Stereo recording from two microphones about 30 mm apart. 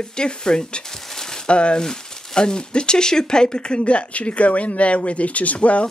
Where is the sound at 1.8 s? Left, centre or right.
Centre.